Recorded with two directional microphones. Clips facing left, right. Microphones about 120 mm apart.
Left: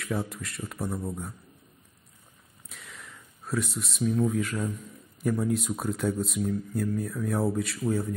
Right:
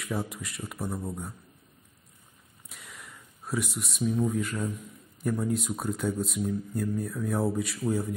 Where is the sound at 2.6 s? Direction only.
5° right (ahead or behind).